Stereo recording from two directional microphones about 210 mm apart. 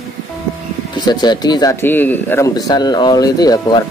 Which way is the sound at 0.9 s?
20° left (ahead or behind).